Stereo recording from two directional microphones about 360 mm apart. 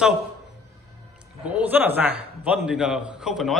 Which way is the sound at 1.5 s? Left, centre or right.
Centre.